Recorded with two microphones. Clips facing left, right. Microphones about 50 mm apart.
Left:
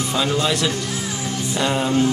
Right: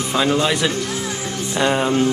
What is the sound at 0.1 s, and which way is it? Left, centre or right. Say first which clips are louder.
A man's voice: right 4 dB; centre.